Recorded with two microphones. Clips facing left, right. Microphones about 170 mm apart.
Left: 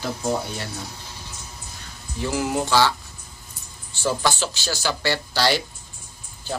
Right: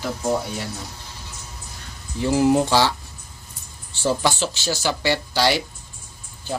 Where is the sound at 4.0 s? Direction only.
25° right (ahead or behind).